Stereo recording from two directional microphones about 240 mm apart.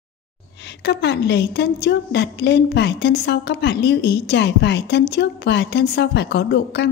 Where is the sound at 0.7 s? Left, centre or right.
Left.